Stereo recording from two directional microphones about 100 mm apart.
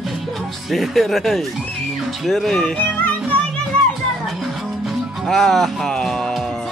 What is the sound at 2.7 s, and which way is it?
Music, 15° left (ahead or behind).